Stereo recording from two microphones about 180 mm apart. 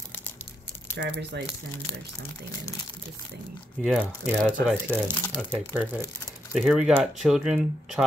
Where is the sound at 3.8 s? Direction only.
5° right (ahead or behind).